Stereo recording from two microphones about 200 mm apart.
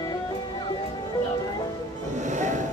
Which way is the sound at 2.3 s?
40° right (ahead or behind).